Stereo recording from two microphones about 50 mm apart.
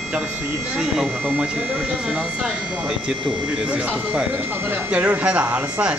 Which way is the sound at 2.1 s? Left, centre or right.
Centre.